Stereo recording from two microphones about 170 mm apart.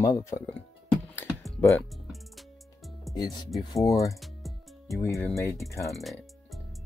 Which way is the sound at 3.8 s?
Centre (ahead or behind).